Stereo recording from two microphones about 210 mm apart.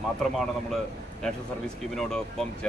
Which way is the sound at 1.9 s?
Centre (ahead or behind).